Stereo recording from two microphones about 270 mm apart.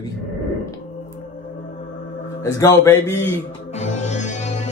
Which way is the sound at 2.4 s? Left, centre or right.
Centre.